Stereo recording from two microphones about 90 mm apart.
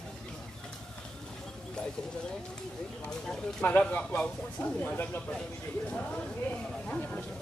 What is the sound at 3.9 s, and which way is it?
Speech, 15° left (ahead or behind).